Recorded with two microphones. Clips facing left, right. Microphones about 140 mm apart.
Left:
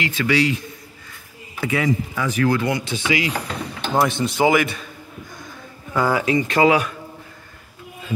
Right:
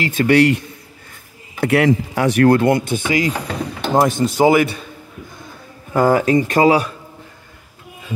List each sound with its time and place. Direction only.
0.0 s speech: 45° right (ahead or behind)
1.6 s a man's voice: 70° right (ahead or behind); by 4.8 s 30° right (ahead or behind)
5.9 s speech: 45° right (ahead or behind)